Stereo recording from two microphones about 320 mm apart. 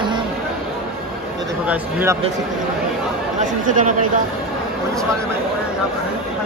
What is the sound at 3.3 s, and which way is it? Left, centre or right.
Speech, right.